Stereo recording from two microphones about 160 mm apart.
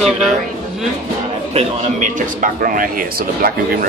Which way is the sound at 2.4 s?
60° right (ahead or behind).